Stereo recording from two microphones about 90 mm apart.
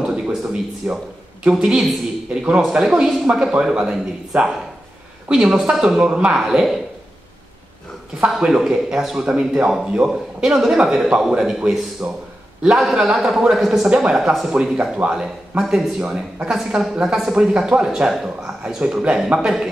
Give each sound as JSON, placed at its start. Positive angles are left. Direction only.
{"t": 0.0, "sound": "a man's voice", "side_deg": -10}
{"t": 8.3, "sound": "a man's voice", "side_deg": -5}